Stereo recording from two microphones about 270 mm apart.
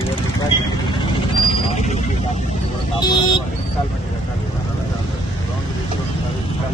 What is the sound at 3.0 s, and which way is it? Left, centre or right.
Vehicle, centre.